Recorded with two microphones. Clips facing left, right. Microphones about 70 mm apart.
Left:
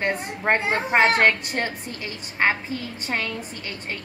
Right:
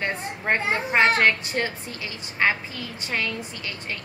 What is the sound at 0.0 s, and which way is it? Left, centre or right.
A woman's voice, left.